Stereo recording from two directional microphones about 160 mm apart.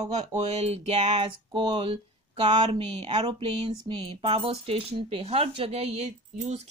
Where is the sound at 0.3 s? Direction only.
45° right (ahead or behind).